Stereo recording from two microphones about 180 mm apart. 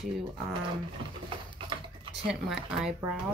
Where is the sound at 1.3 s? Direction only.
30° right (ahead or behind).